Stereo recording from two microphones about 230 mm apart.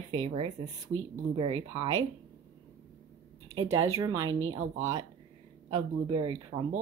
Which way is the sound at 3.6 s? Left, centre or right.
Centre.